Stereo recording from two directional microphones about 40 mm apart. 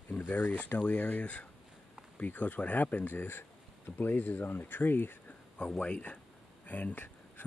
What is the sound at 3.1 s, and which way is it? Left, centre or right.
Speech, left.